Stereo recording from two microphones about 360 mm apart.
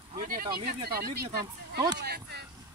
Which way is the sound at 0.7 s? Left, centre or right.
Right.